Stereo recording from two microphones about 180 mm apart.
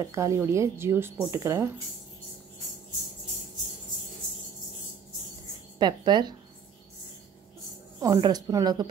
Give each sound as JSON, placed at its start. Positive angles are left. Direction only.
{"t": 0.0, "sound": "speech", "side_deg": -15}
{"t": 5.8, "sound": "speech", "side_deg": -25}
{"t": 8.0, "sound": "a woman's voice", "side_deg": -20}